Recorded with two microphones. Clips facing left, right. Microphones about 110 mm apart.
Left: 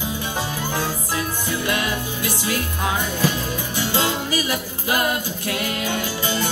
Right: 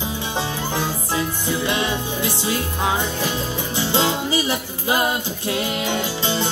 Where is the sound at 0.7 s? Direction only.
20° right (ahead or behind).